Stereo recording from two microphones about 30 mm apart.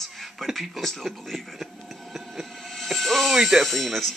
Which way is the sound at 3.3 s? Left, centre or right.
Centre.